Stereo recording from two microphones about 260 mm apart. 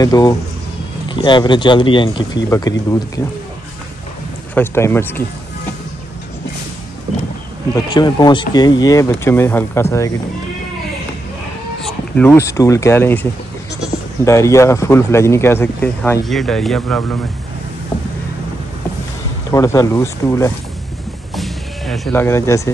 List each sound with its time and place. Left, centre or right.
0.0 s speech: centre
4.6 s speech: centre
7.7 s speech: centre
11.8 s speech: centre
19.5 s speech: centre
21.4 s music: centre